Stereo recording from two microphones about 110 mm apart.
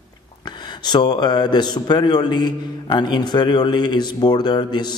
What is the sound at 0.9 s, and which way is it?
A man's voice, 40° left (ahead or behind).